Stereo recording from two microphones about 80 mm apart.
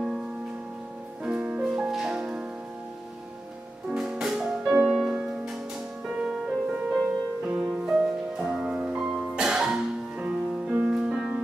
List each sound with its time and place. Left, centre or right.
0.0 s music: centre
3.9 s music: centre